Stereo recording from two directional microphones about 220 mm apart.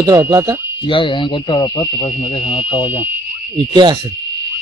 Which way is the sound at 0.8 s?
25° left (ahead or behind).